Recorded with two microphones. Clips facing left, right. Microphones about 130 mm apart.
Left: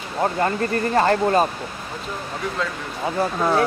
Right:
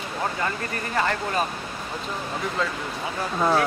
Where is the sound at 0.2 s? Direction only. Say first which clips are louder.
Left 8 dB; 40° left (ahead or behind).